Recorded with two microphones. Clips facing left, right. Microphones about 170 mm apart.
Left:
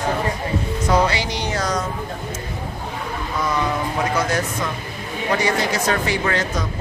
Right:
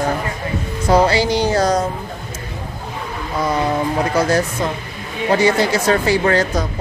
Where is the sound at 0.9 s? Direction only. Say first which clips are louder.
Right 6 dB; 35° right (ahead or behind).